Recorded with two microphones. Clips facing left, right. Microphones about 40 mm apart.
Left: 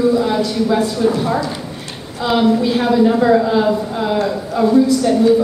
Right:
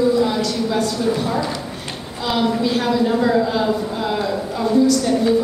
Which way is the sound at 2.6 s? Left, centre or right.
Centre.